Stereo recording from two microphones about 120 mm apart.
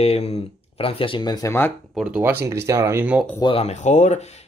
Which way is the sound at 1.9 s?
15° right (ahead or behind).